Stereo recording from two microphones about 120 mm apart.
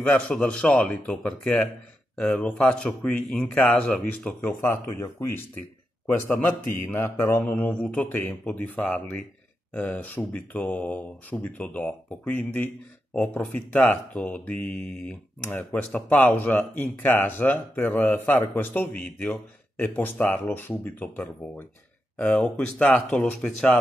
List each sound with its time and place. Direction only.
0.0 s speech: 10° left (ahead or behind)
4.6 s a man's voice: 25° left (ahead or behind)
6.6 s mantra: 90° left
6.9 s a man's voice: 20° left (ahead or behind)
22.2 s speech: 10° left (ahead or behind)